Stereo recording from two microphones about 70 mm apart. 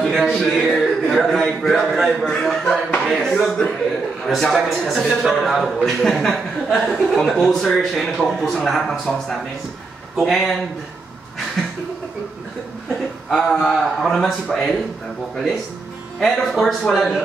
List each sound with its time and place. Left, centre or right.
0.0 s a man's voice: centre
13.3 s a man's voice: centre